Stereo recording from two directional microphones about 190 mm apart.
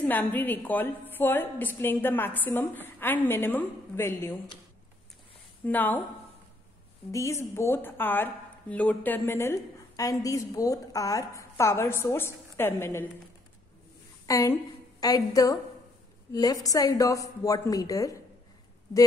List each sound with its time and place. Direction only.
0.0 s speech: 10° left (ahead or behind)
5.7 s speech: 10° left (ahead or behind)
7.1 s speech: 15° left (ahead or behind)
14.2 s a woman's voice: 15° left (ahead or behind)